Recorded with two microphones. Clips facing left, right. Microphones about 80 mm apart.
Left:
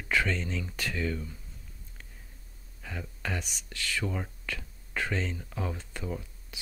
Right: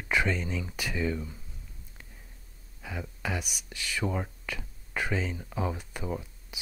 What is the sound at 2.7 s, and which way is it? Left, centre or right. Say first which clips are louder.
Speech: right 2 dB; centre.